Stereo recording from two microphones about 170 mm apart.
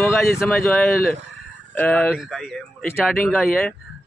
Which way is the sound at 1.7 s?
10° left (ahead or behind).